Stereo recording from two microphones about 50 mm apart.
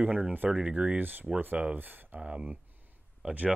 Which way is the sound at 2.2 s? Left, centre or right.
Right.